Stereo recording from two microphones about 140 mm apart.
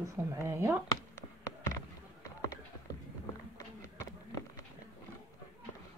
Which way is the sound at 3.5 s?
20° left (ahead or behind).